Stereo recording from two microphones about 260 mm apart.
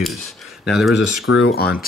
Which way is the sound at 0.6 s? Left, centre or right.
Centre.